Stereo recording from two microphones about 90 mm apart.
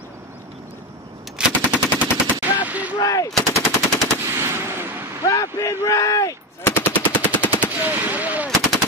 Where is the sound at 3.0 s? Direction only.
40° left (ahead or behind).